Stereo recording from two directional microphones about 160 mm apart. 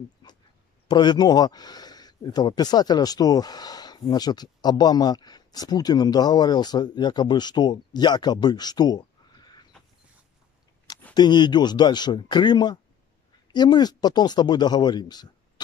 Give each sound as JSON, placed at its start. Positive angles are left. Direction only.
{"t": 0.8, "sound": "speech", "side_deg": 25}
{"t": 11.1, "sound": "speech", "side_deg": 25}